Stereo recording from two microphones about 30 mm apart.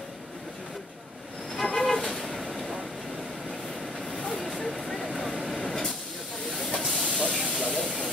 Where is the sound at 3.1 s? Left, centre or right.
Centre.